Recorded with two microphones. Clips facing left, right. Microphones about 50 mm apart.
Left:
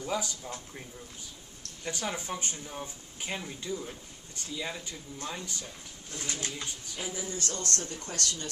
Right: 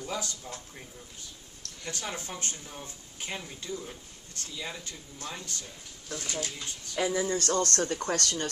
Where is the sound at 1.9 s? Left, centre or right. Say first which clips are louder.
Left 3 dB; centre.